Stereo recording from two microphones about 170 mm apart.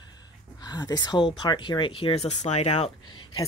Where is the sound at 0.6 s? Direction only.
25° left (ahead or behind).